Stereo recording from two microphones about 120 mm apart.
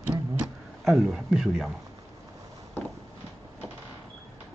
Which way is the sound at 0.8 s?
Centre (ahead or behind).